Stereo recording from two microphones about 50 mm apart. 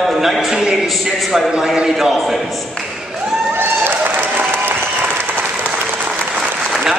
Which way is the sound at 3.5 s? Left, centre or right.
Right.